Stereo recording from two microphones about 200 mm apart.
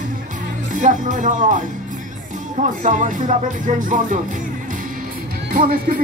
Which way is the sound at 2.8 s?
40° right (ahead or behind).